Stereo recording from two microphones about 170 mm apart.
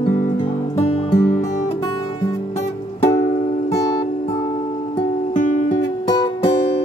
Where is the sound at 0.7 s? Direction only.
40° left (ahead or behind).